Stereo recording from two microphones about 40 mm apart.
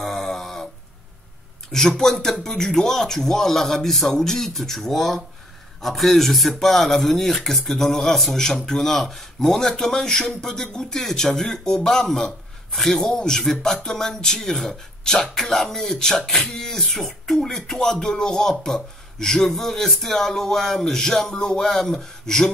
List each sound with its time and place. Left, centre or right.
0.0 s a sound: centre
1.7 s a man's voice: left
18.5 s a man's voice: centre